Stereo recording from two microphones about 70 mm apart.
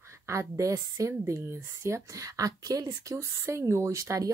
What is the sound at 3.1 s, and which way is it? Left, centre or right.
A woman's voice, right.